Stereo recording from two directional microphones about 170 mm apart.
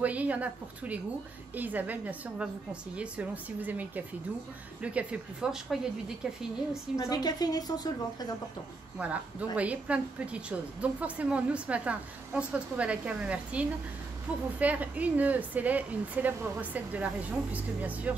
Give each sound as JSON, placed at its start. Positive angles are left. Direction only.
{"t": 0.0, "sound": "a woman's voice", "side_deg": -10}
{"t": 6.7, "sound": "a woman's voice", "side_deg": 20}
{"t": 8.9, "sound": "a woman's voice", "side_deg": -10}